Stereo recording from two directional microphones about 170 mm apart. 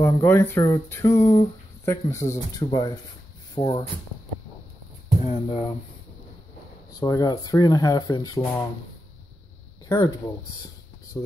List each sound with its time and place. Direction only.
0.0 s speech: 15° left (ahead or behind)
3.5 s speech: 35° left (ahead or behind)
5.2 s speech: 35° left (ahead or behind)
6.9 s speech: 25° left (ahead or behind)
9.8 s speech: 20° left (ahead or behind)
11.1 s speech: 10° left (ahead or behind)